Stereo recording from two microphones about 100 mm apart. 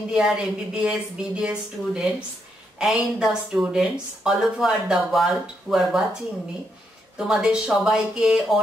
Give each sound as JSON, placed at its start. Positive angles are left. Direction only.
{"t": 0.1, "sound": "a woman's voice", "side_deg": -10}
{"t": 7.2, "sound": "speech", "side_deg": -5}